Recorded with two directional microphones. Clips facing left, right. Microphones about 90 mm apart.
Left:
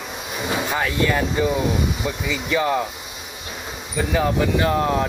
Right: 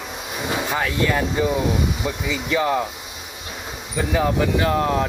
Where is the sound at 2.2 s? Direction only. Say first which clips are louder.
Even; 5° right (ahead or behind).